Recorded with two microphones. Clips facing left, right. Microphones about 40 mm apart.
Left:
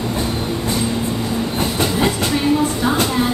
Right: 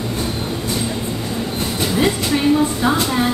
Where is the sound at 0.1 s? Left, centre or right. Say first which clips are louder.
Left 2 dB; centre.